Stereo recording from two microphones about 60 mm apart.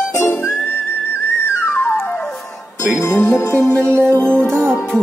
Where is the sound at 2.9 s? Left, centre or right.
Left.